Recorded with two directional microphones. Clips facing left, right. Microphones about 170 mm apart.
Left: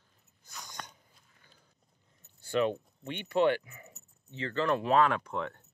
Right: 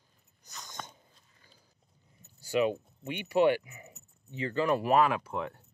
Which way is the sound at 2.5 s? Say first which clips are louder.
Right 1 dB; 10° right (ahead or behind).